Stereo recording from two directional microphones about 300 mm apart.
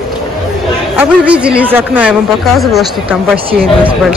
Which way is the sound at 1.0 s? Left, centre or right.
Centre.